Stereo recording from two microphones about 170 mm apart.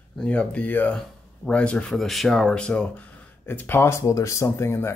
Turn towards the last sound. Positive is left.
turn(degrees=15)  # may be behind; listen again after turning